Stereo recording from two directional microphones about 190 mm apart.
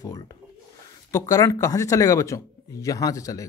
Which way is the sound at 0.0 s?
20° left (ahead or behind).